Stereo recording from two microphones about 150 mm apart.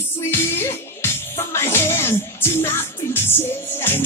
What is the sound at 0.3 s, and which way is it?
Music, 15° left (ahead or behind).